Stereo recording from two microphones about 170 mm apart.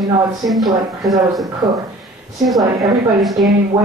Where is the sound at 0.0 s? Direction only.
Centre (ahead or behind).